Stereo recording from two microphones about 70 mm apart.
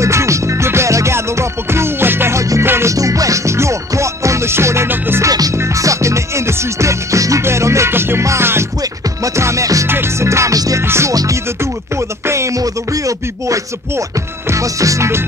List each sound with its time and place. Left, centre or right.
0.0 s music: right
2.9 s music: right
5.6 s music: right
9.8 s music: right
12.3 s music: right